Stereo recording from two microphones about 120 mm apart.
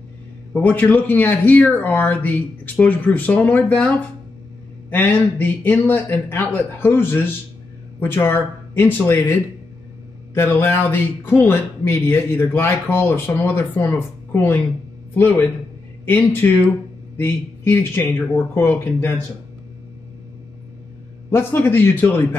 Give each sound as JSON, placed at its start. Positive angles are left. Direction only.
{"t": 0.5, "sound": "speech", "side_deg": 15}
{"t": 4.9, "sound": "speech", "side_deg": 15}
{"t": 21.3, "sound": "speech", "side_deg": 20}